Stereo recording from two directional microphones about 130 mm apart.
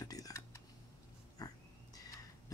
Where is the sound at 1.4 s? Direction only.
30° left (ahead or behind).